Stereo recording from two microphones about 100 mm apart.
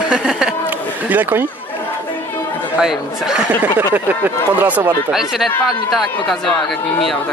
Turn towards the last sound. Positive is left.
turn(degrees=5)  # may be behind; listen again after turning